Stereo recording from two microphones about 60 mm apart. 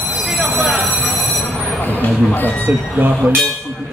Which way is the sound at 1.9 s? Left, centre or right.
Left.